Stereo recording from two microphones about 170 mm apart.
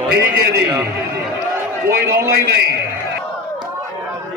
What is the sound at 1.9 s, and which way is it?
Speech, 65° right (ahead or behind).